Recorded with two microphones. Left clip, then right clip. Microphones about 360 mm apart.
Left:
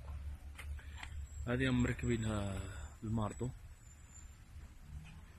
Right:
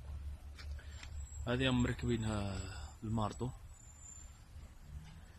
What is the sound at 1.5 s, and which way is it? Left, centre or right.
Speech, centre.